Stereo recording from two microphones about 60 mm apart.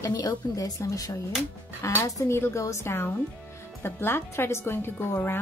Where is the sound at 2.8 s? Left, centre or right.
Left.